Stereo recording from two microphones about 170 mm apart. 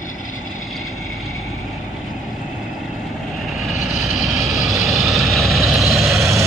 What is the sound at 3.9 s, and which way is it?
Vehicle, centre (ahead or behind).